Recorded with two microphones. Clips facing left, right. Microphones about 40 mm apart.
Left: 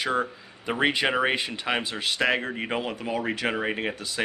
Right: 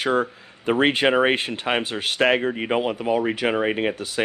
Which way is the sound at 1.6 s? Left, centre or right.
Right.